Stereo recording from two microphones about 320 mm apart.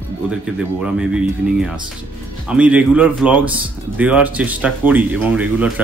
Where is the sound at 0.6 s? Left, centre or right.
Centre.